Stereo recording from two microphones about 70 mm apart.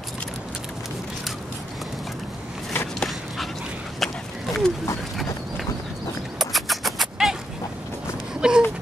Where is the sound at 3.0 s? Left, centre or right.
Centre.